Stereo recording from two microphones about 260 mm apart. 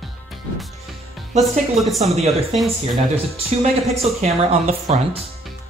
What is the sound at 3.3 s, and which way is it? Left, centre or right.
Speech, right.